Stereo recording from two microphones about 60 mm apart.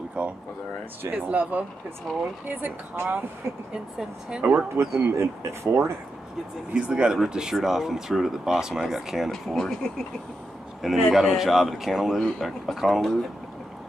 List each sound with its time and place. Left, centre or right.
0.2 s a sound: right
1.1 s speech: right
2.1 s speech: centre
2.4 s speech: right
3.7 s speech: centre
5.0 s speech: right
6.7 s speech: centre
9.3 s speech: centre
10.8 s speech: centre